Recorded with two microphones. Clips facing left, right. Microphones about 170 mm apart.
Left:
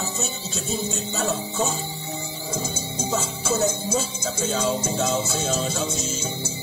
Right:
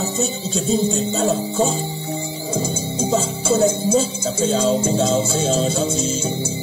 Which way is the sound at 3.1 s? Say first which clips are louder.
Right 7 dB; 30° right (ahead or behind).